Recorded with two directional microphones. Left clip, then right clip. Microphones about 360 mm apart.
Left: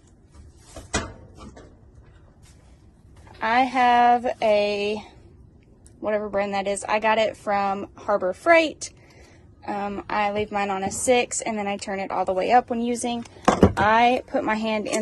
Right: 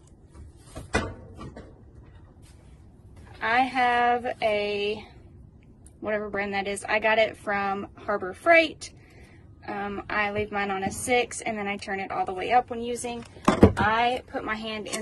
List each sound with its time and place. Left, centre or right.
3.3 s a woman's voice: centre